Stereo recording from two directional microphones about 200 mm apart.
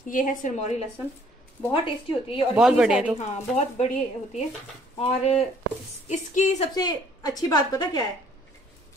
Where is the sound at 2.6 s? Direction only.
5° right (ahead or behind).